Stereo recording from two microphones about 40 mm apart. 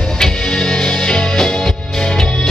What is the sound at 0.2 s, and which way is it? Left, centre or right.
Music, centre.